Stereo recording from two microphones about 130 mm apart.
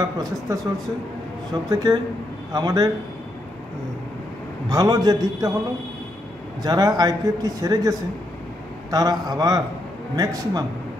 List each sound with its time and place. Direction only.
0.0 s a man's voice: 30° right (ahead or behind)
4.6 s a man's voice: 30° right (ahead or behind)
6.6 s a man's voice: 30° right (ahead or behind)
8.9 s a man's voice: 30° right (ahead or behind)